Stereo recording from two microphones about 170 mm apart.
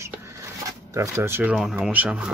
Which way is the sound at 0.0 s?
15° right (ahead or behind).